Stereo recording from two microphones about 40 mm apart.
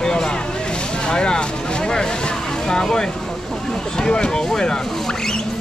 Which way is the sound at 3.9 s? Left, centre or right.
Centre.